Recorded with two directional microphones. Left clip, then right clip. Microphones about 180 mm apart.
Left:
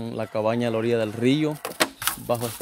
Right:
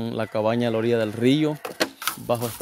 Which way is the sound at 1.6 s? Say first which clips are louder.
Left 1 dB; 40° left (ahead or behind).